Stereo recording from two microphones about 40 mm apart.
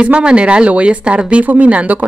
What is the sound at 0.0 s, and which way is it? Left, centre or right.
Speech, right.